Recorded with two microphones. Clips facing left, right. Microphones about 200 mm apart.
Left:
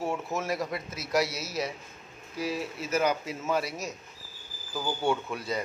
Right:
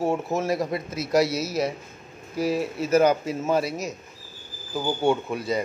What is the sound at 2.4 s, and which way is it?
Speech, 40° right (ahead or behind).